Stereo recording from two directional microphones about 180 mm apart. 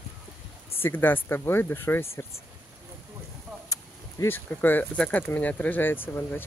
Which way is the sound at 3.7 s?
15° left (ahead or behind).